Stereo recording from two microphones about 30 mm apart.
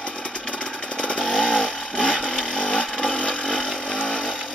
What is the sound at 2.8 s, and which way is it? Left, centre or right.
Motorcycle, centre.